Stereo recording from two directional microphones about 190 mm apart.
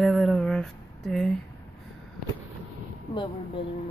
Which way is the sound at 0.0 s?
Centre (ahead or behind).